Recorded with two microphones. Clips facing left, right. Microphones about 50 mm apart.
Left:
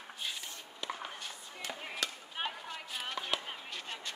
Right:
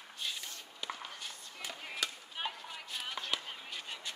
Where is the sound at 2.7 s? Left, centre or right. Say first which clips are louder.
Left 2 dB; centre.